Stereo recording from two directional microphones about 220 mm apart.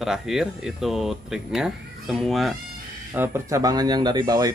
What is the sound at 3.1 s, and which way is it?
Speech, 10° right (ahead or behind).